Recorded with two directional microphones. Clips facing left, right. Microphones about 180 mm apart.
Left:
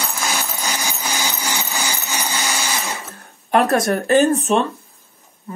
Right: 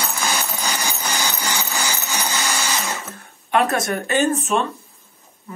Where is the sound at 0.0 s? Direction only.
Centre (ahead or behind).